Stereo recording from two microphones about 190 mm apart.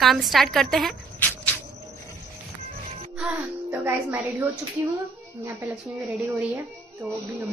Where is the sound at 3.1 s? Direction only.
5° right (ahead or behind).